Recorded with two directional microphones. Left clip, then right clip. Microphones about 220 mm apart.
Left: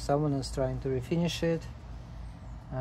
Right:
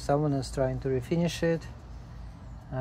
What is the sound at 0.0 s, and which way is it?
Speech, 15° right (ahead or behind).